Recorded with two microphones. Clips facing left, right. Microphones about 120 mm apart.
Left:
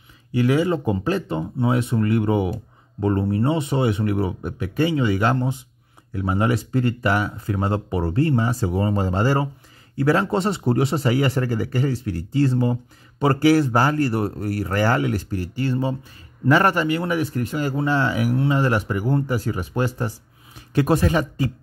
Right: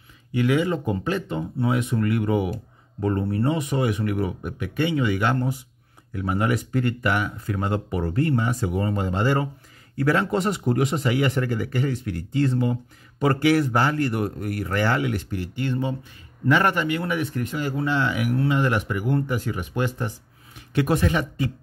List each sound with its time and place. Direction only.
0.3 s speech: 35° left (ahead or behind)